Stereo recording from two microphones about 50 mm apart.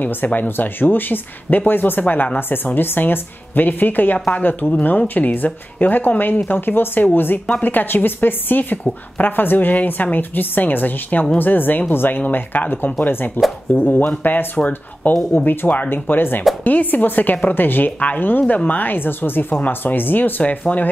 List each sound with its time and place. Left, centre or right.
0.0 s speech: left